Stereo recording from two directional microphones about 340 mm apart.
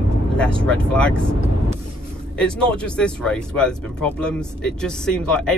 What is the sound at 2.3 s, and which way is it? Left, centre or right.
Speech, centre.